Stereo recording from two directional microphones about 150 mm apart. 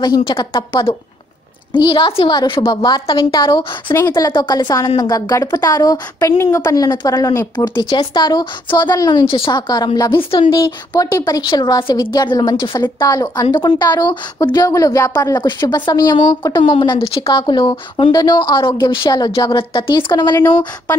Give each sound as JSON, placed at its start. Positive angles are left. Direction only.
{"t": 0.0, "sound": "a woman's voice", "side_deg": 30}